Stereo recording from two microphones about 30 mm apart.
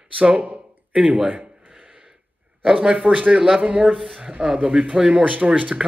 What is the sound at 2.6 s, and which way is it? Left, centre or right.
A man's voice, right.